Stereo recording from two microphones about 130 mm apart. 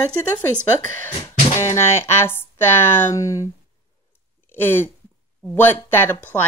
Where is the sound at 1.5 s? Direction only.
20° left (ahead or behind).